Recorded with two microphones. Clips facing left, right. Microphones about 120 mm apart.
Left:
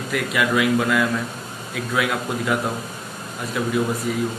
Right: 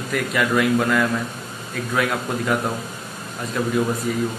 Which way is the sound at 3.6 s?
5° left (ahead or behind).